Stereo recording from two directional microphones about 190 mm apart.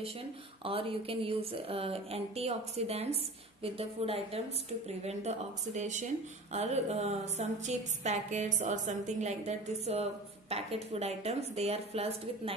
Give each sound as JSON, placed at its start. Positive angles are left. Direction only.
{"t": 0.7, "sound": "a woman's voice", "side_deg": -30}
{"t": 5.8, "sound": "a woman's voice", "side_deg": -40}